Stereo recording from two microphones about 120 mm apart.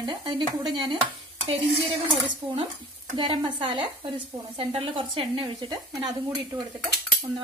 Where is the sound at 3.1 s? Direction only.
40° right (ahead or behind).